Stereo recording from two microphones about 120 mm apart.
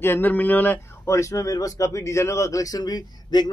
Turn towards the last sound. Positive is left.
turn(degrees=35)  # may be behind; listen again after turning